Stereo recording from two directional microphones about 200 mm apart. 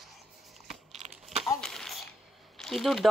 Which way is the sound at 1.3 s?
Centre (ahead or behind).